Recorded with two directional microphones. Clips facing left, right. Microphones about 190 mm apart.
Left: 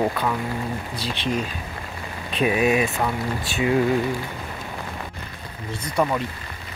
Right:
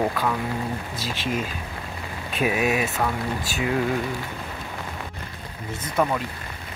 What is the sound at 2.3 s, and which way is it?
Speech, 5° right (ahead or behind).